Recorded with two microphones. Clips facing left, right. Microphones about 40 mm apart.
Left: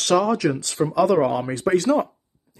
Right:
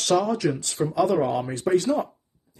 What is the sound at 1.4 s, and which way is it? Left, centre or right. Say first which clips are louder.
Speech: left 2 dB; left.